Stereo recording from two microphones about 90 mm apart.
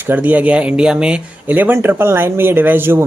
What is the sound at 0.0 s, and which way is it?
Speech, 20° right (ahead or behind).